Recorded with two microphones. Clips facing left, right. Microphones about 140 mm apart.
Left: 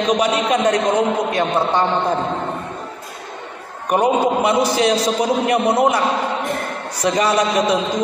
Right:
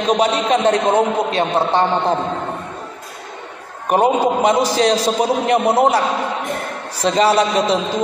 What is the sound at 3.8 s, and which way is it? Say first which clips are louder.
A man's voice: right 1 dB; 30° right (ahead or behind).